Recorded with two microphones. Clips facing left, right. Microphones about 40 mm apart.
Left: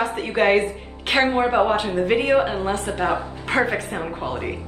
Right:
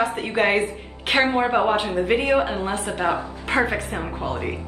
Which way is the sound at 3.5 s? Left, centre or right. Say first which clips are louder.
Left 1 dB; centre.